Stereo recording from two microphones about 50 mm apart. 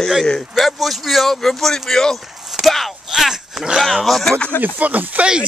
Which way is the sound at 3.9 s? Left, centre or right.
Centre.